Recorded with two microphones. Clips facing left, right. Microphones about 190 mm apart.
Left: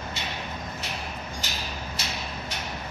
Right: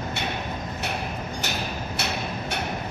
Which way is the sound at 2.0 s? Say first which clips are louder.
Right 6 dB; 65° right (ahead or behind).